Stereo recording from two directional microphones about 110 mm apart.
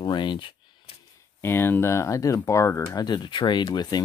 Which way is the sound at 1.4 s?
20° left (ahead or behind).